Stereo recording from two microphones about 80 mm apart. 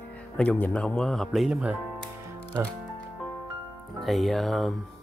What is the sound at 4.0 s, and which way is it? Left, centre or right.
Speech, centre.